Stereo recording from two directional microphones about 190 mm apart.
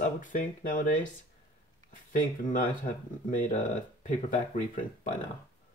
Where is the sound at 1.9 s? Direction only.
45° left (ahead or behind).